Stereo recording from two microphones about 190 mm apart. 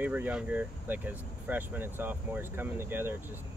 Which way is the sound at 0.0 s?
10° right (ahead or behind).